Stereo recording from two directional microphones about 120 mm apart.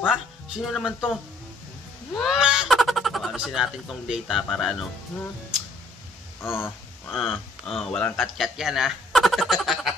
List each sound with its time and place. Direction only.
0.5 s speech: 5° right (ahead or behind)
2.1 s speech: 5° right (ahead or behind)
6.4 s speech: 20° left (ahead or behind)
7.1 s speech: centre (ahead or behind)